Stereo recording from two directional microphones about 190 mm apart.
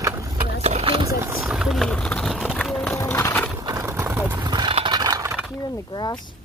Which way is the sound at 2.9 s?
15° left (ahead or behind).